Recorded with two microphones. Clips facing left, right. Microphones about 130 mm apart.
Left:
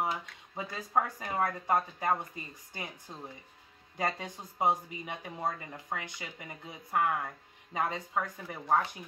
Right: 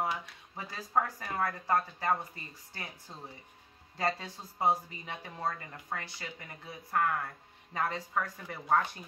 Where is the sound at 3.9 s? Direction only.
15° left (ahead or behind).